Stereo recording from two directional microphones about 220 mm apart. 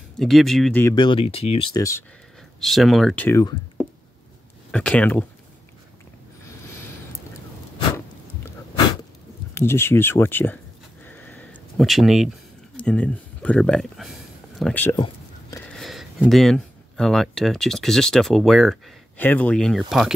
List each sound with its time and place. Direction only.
0.2 s speech: centre (ahead or behind)
0.8 s speech: 20° left (ahead or behind)
2.6 s speech: centre (ahead or behind)
4.6 s speech: 5° left (ahead or behind)
9.5 s speech: 10° left (ahead or behind)
11.1 s a sound: 10° left (ahead or behind)
12.7 s speech: 5° left (ahead or behind)